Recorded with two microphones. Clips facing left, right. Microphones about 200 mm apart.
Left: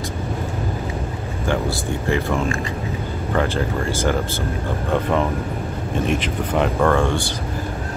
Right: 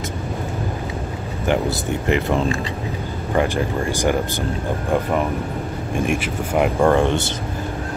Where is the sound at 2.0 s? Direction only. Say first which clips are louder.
Right 2 dB; 20° right (ahead or behind).